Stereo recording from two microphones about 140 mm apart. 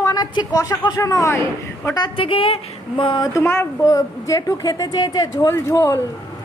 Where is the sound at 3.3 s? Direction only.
20° left (ahead or behind).